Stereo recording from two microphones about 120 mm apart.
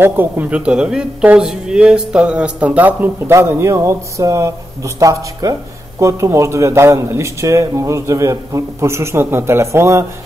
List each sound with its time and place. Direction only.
0.0 s a woman's voice: 15° right (ahead or behind)